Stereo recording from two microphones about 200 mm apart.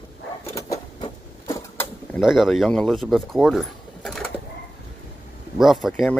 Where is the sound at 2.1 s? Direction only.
Centre (ahead or behind).